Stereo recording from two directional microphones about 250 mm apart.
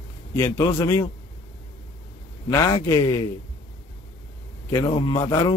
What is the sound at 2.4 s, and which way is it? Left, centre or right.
Speech, centre.